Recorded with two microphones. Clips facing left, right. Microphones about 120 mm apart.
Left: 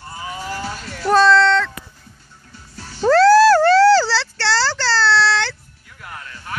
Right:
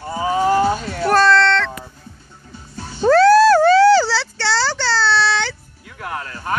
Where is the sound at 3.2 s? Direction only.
90° left.